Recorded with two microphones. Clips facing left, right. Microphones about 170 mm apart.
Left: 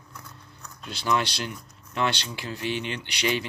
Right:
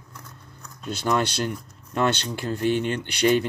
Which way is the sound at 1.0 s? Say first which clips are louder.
Right 3 dB; 45° right (ahead or behind).